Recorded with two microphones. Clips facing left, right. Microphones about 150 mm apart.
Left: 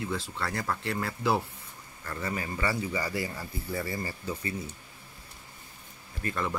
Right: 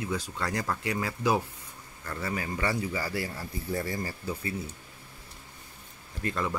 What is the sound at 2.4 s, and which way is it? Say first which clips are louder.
Speech: right 1 dB; 15° right (ahead or behind).